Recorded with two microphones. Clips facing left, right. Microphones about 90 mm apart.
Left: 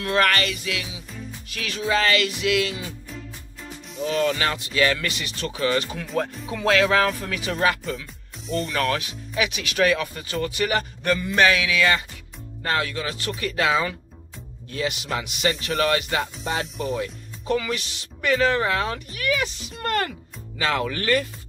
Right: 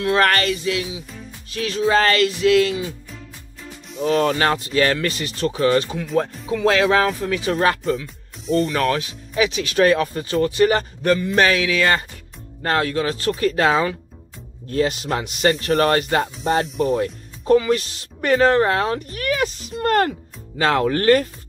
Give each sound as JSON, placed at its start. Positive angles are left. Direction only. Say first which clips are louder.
{"t": 0.0, "sound": "speech", "louder": "right 4 dB", "side_deg": -35}
{"t": 4.0, "sound": "speech", "louder": "right 5 dB", "side_deg": -40}
{"t": 8.5, "sound": "speech", "louder": "right 8 dB", "side_deg": 0}
{"t": 8.7, "sound": "speech", "louder": "right 4 dB", "side_deg": -35}